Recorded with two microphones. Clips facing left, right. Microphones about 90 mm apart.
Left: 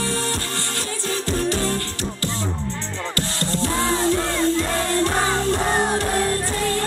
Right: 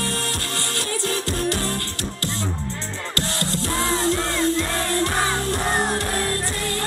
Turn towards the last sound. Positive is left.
turn(degrees=0)  # may be behind; listen again after turning